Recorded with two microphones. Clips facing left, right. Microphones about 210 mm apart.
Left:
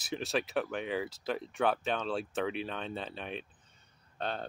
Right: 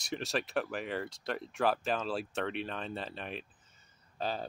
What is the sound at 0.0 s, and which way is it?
Speech, centre (ahead or behind).